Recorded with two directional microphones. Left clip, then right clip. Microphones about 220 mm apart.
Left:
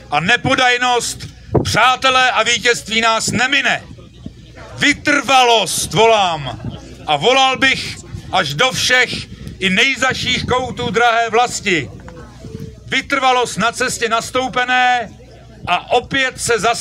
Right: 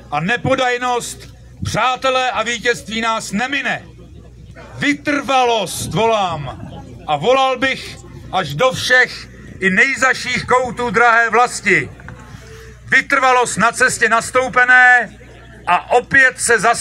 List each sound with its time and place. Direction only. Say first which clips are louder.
0.1 s a man's voice: left 3 dB; 35° left (ahead or behind)
9.8 s a man's voice: right 1 dB; 55° left (ahead or behind)
10.5 s a man's voice: right 3 dB; 35° left (ahead or behind)
11.3 s a man's voice: right 2 dB; 60° left (ahead or behind)
12.9 s a man's voice: right 2 dB; 60° left (ahead or behind)